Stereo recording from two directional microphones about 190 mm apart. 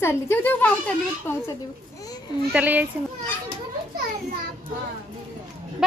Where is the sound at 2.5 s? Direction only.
10° right (ahead or behind).